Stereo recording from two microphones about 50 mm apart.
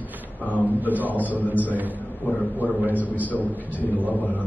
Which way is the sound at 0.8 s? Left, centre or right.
Right.